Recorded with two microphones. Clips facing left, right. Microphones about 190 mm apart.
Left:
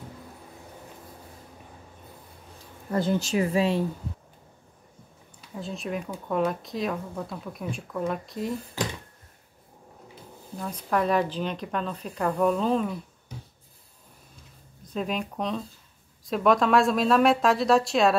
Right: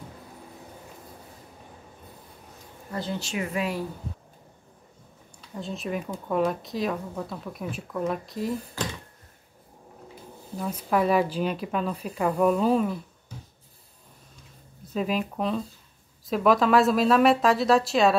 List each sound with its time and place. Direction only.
2.9 s speech: 45° left (ahead or behind); by 3.8 s 30° left (ahead or behind)
5.5 s speech: centre (ahead or behind)
10.6 s speech: 5° right (ahead or behind)
14.9 s speech: centre (ahead or behind)